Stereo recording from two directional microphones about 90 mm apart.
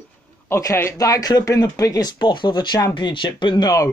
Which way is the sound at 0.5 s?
35° left (ahead or behind).